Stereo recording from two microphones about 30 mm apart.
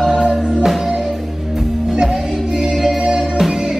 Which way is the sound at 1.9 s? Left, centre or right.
Right.